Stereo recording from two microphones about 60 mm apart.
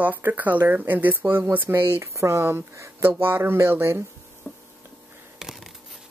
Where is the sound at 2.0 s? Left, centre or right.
Right.